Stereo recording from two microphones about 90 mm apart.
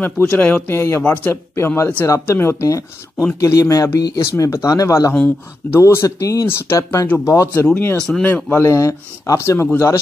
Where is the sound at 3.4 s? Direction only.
35° left (ahead or behind).